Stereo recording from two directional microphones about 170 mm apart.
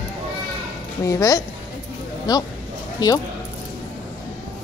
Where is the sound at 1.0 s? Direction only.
20° left (ahead or behind).